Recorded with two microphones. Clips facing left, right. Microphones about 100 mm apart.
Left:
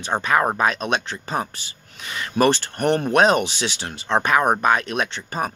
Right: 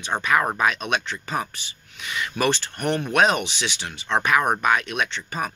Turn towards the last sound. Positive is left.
turn(degrees=35)  # may be behind; listen again after turning